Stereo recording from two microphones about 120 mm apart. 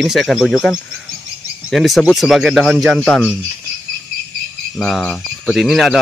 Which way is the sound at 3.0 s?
15° left (ahead or behind).